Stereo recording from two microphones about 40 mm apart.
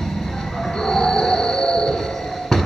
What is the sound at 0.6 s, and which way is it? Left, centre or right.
Music, centre.